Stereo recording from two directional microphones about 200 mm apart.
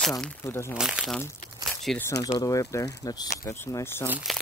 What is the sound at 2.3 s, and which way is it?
Speech, 15° left (ahead or behind).